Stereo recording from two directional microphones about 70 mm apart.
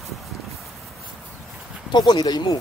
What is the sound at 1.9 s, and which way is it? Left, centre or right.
Speech, left.